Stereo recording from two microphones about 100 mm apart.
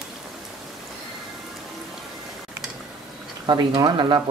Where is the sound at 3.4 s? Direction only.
45° right (ahead or behind).